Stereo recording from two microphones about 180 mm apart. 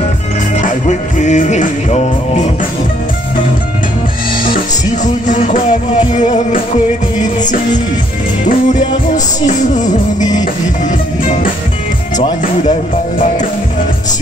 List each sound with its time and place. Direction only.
0.6 s music: 45° left (ahead or behind)
5.0 s music: 45° left (ahead or behind)
8.5 s music: 45° left (ahead or behind)
12.2 s music: 45° left (ahead or behind)